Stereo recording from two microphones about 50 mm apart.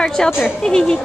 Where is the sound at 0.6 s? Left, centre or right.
Centre.